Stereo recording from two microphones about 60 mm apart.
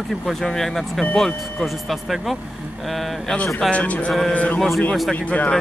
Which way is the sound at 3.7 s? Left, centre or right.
Left.